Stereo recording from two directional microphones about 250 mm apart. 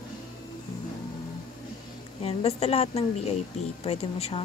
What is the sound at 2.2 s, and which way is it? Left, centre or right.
A woman's voice, left.